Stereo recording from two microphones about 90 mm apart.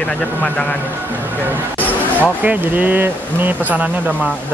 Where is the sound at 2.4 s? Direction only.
20° right (ahead or behind).